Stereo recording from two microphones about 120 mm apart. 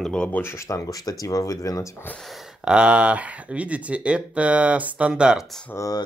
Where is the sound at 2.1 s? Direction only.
5° left (ahead or behind).